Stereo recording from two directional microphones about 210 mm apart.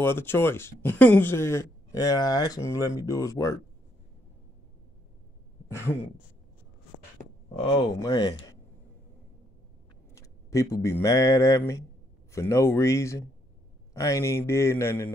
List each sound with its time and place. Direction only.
0.0 s speech: 10° left (ahead or behind)
8.0 s speech: 20° left (ahead or behind)
10.1 s speech: 15° left (ahead or behind)